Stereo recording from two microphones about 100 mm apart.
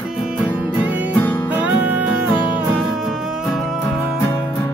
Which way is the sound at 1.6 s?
15° right (ahead or behind).